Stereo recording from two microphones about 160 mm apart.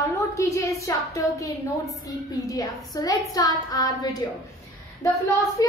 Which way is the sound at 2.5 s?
20° left (ahead or behind).